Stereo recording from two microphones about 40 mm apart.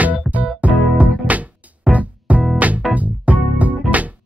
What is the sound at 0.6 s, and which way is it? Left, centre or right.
Music, right.